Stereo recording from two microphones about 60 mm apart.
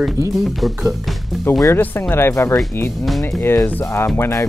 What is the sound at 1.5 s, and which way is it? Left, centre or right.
Speech, left.